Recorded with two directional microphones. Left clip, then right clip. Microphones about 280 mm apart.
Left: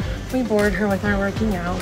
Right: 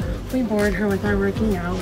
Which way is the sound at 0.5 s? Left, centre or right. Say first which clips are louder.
Left 2 dB; centre.